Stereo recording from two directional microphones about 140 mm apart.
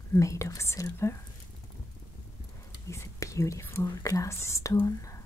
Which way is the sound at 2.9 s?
20° left (ahead or behind).